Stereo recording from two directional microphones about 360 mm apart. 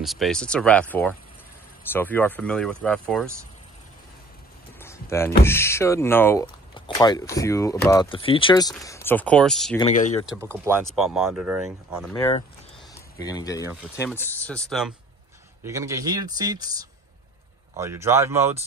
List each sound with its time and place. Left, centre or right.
0.0 s speech: centre
4.7 s a sound: centre
5.4 s speech: centre
9.8 s speech: centre
10.2 s speech: centre
12.1 s speech: centre
17.7 s speech: centre